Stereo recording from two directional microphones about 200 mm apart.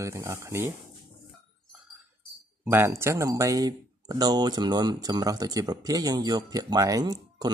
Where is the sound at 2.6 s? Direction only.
10° right (ahead or behind).